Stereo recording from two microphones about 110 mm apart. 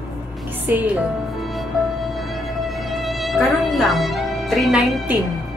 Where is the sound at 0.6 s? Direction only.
15° right (ahead or behind).